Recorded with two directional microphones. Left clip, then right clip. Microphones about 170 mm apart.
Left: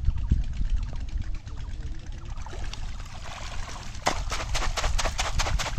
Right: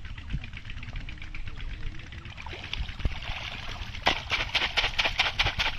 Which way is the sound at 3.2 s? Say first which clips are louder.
Right 2 dB; 25° left (ahead or behind).